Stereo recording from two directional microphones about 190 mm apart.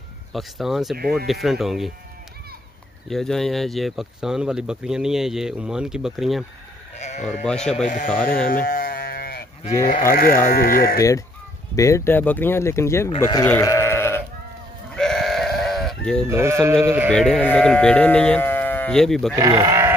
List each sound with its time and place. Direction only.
0.3 s speech: centre (ahead or behind)
0.9 s speech: 55° right (ahead or behind)
1.2 s speech: centre (ahead or behind)
3.1 s speech: centre (ahead or behind)
7.0 s speech: 35° left (ahead or behind)
7.4 s speech: 5° left (ahead or behind)
8.6 s sheep: 50° left (ahead or behind)
9.8 s speech: 50° left (ahead or behind)
11.0 s speech: 15° left (ahead or behind)
13.5 s sheep: 15° left (ahead or behind)
15.0 s sheep: centre (ahead or behind)
16.3 s sheep: 15° right (ahead or behind)
17.1 s speech: 5° left (ahead or behind)
19.3 s speech: 15° right (ahead or behind)